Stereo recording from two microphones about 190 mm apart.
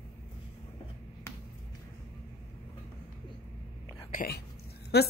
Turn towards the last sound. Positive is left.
turn(degrees=55)  # may be behind; listen again after turning